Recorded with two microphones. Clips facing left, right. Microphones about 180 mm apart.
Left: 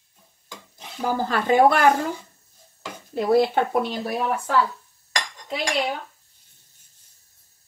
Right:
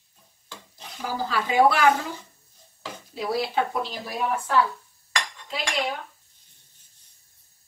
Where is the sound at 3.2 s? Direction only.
50° left (ahead or behind).